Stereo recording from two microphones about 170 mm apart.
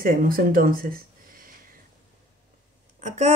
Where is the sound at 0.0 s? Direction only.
55° right (ahead or behind).